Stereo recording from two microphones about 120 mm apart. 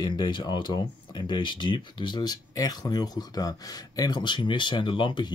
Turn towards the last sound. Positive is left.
turn(degrees=40)  # may be behind; listen again after turning